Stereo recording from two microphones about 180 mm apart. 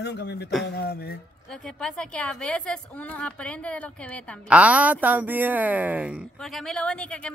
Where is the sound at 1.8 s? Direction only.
5° left (ahead or behind).